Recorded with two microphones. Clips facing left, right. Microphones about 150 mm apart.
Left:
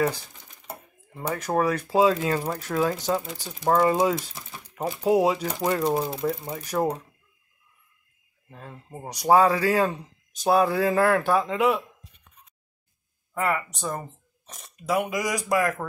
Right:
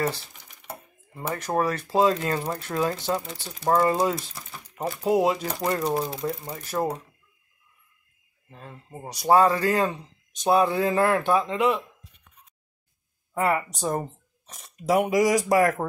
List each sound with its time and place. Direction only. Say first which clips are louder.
0.7 s speech: even; 5° left (ahead or behind)
8.5 s speech: left 1 dB; 5° left (ahead or behind)
13.3 s speech: right 2 dB; 30° right (ahead or behind)